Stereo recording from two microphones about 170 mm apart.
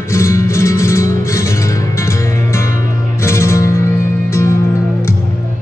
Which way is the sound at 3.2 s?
15° left (ahead or behind).